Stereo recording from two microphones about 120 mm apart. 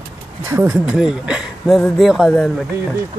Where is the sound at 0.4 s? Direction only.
20° right (ahead or behind).